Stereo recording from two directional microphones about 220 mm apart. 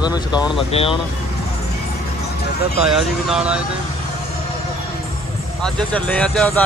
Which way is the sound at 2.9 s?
Centre (ahead or behind).